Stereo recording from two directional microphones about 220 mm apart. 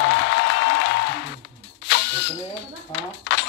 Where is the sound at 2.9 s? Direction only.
55° left (ahead or behind).